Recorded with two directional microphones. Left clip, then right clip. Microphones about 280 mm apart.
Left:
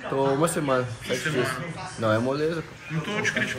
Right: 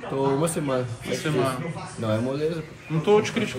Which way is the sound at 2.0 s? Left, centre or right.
Centre.